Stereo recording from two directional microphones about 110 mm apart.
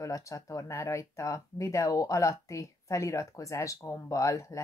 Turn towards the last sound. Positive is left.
turn(degrees=30)  # may be behind; listen again after turning